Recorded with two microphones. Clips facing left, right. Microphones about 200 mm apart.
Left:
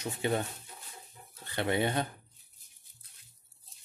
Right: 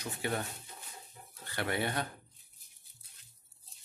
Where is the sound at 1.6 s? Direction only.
20° left (ahead or behind).